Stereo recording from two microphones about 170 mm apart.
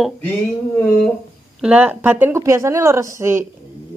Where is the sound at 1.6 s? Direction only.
10° right (ahead or behind).